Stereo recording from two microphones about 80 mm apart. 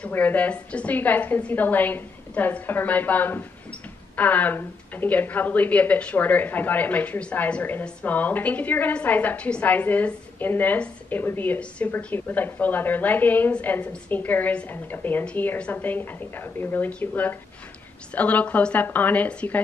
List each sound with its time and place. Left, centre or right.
0.0 s speech: left